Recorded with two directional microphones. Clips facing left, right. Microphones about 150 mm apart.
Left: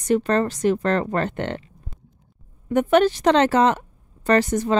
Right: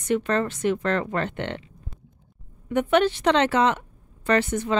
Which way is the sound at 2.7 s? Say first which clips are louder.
Left 3 dB; 40° left (ahead or behind).